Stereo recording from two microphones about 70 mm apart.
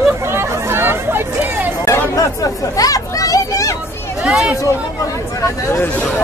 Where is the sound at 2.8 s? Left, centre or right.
Left.